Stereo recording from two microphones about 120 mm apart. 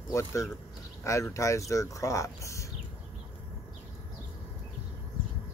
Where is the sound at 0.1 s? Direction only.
25° left (ahead or behind).